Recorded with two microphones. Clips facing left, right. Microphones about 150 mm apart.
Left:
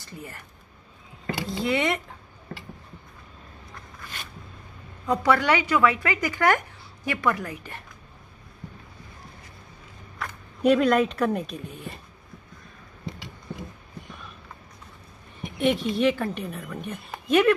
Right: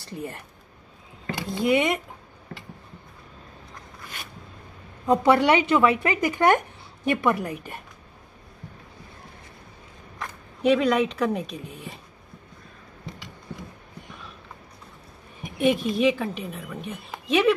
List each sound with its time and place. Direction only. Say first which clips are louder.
0.1 s speech: right 6 dB; 30° right (ahead or behind)
1.5 s speech: right 4 dB; 15° right (ahead or behind)
5.0 s speech: right 4 dB; 25° right (ahead or behind)
10.6 s a woman's voice: left 1 dB; centre (ahead or behind)
15.6 s a woman's voice: right 1 dB; 10° right (ahead or behind)